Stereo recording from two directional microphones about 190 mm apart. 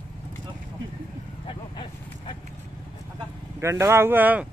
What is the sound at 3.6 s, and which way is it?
Speech, 15° right (ahead or behind).